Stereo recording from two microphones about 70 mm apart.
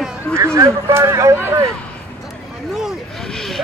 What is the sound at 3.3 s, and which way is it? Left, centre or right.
Vehicle, centre.